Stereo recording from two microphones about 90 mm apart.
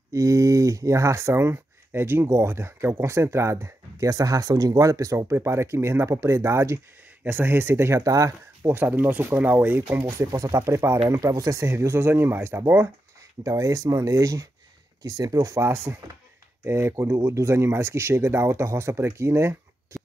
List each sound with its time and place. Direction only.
0.1 s speech: 35° right (ahead or behind)
13.4 s speech: 40° right (ahead or behind)